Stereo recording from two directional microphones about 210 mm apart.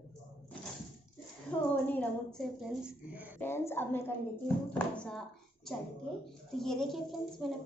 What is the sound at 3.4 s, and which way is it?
A woman's voice, 10° left (ahead or behind).